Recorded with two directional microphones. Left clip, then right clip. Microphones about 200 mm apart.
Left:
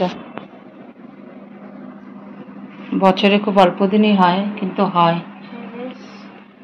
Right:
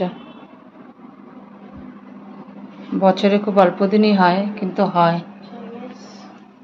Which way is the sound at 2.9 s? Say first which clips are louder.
Left 1 dB; centre (ahead or behind).